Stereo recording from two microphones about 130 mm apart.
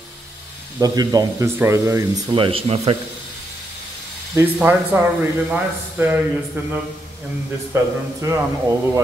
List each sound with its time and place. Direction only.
0.7 s speech: 30° right (ahead or behind)
2.3 s speech: 45° right (ahead or behind)
4.6 s speech: 10° right (ahead or behind)
7.7 s speech: 25° right (ahead or behind)